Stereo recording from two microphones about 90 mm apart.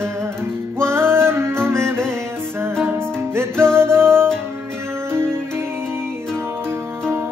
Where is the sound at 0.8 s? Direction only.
25° right (ahead or behind).